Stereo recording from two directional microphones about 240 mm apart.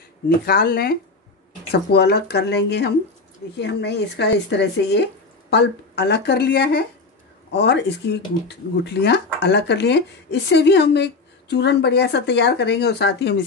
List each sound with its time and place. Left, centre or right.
0.5 s speech: left